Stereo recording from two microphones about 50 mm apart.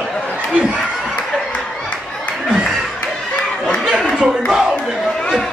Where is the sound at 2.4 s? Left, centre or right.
Centre.